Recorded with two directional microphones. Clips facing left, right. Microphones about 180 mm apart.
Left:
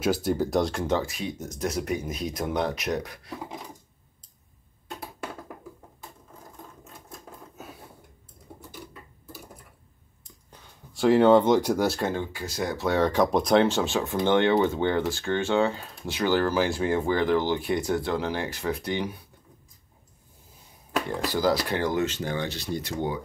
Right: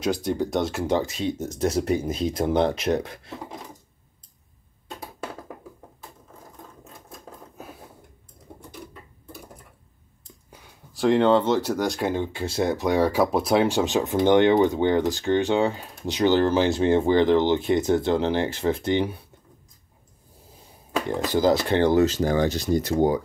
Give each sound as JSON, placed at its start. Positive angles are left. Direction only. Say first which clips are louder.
{"t": 0.0, "sound": "speech", "louder": "even", "side_deg": 5}
{"t": 0.9, "sound": "speech", "louder": "right 4 dB", "side_deg": -25}
{"t": 7.1, "sound": "sewing machine", "louder": "right 1 dB", "side_deg": 0}
{"t": 10.5, "sound": "speech", "louder": "even", "side_deg": 0}
{"t": 12.1, "sound": "speech", "louder": "right 4 dB", "side_deg": -25}
{"t": 12.7, "sound": "speech", "louder": "even", "side_deg": -15}
{"t": 21.1, "sound": "speech", "louder": "right 5 dB", "side_deg": -20}